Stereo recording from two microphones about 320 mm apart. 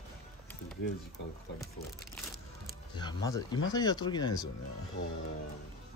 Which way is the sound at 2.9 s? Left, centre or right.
Centre.